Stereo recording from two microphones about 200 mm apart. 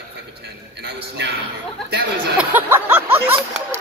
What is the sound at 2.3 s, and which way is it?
Speech, 10° right (ahead or behind).